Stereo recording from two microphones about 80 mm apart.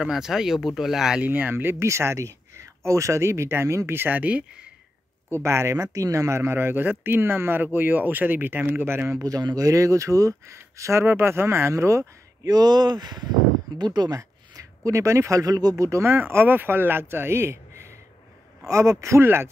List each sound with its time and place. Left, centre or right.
0.0 s speech: centre
1.2 s speech: right
5.3 s speech: right
9.2 s speech: right
12.5 s speech: right
13.7 s a sound: right
14.9 s speech: right